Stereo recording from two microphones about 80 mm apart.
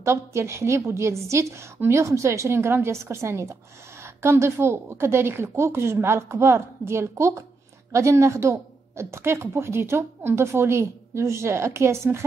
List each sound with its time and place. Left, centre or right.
0.0 s speech: right